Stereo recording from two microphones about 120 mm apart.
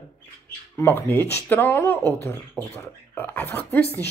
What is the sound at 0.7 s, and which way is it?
Speech, 20° left (ahead or behind).